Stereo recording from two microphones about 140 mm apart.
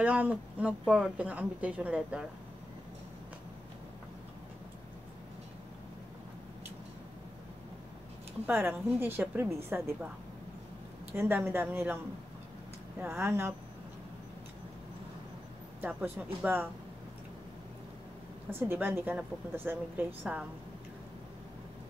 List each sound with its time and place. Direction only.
0.0 s speech: 10° right (ahead or behind)
8.5 s speech: 15° right (ahead or behind)
11.1 s speech: 15° right (ahead or behind)
13.0 s speech: 20° right (ahead or behind)
15.8 s speech: 10° right (ahead or behind)
18.5 s speech: 15° right (ahead or behind)